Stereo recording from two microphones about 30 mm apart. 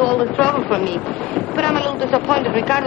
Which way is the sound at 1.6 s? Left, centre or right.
Centre.